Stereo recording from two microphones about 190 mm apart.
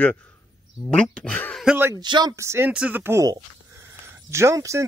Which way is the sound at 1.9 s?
20° right (ahead or behind).